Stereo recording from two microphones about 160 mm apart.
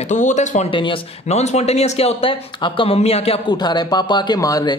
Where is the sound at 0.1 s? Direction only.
50° left (ahead or behind).